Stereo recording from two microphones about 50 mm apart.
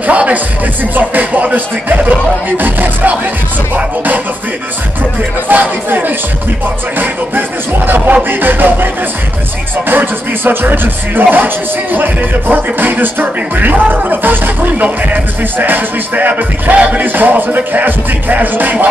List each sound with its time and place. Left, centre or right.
0.0 s music: right
0.9 s speech: right
3.7 s music: right
5.5 s speech: right
8.2 s music: right
9.8 s speech: right